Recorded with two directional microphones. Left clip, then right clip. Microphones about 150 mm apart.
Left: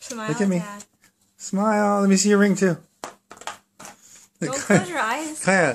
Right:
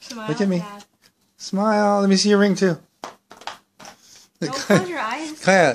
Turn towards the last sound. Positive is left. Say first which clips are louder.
# right 4 dB
turn(degrees=-10)  # may be behind; listen again after turning